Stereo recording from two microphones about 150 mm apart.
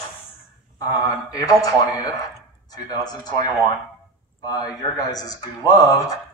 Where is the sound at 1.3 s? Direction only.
25° left (ahead or behind).